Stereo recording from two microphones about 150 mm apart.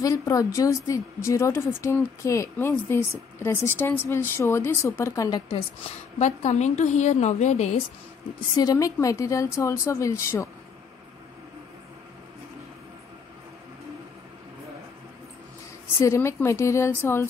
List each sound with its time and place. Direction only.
0.0 s speech: 20° left (ahead or behind)
6.1 s a woman's voice: 50° left (ahead or behind)
8.5 s speech: 25° left (ahead or behind)
16.0 s speech: 20° left (ahead or behind)